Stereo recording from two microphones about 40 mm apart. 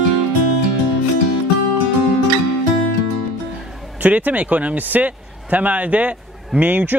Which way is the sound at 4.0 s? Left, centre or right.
Right.